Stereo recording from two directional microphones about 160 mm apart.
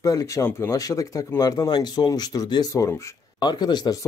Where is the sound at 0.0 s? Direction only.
20° left (ahead or behind).